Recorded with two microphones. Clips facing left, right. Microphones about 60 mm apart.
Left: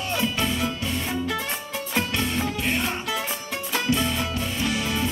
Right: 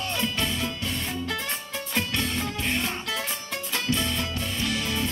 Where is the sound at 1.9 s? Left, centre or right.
Centre.